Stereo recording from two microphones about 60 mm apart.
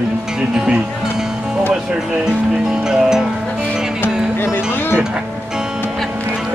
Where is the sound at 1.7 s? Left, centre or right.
Centre.